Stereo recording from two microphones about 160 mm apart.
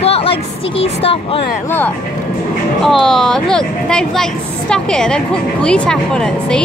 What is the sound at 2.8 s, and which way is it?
A woman's voice, centre (ahead or behind).